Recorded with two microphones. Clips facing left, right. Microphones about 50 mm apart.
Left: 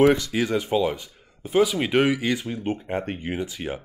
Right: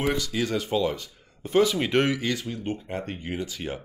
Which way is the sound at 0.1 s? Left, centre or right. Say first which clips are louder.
Left 4 dB; left.